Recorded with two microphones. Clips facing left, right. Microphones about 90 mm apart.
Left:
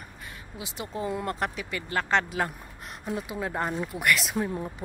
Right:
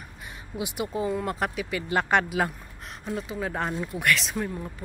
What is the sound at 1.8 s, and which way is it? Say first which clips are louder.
Speech: right 2 dB; 15° right (ahead or behind).